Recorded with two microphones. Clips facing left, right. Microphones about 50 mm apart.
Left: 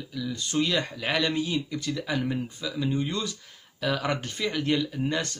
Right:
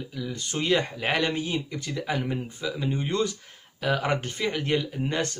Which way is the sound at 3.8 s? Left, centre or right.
Right.